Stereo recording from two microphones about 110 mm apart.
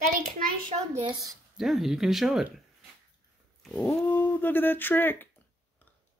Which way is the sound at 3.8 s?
20° left (ahead or behind).